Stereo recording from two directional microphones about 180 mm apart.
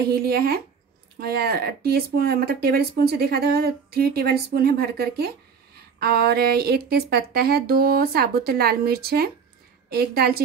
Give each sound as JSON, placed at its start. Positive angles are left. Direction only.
{"t": 0.1, "sound": "speech", "side_deg": -60}